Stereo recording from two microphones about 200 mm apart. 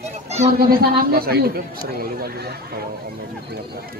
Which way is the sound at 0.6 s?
50° right (ahead or behind).